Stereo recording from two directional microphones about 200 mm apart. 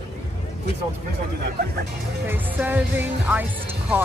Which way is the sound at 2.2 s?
10° right (ahead or behind).